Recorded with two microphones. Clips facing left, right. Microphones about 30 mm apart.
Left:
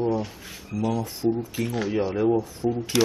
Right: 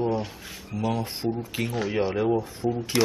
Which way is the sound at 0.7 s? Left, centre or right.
Right.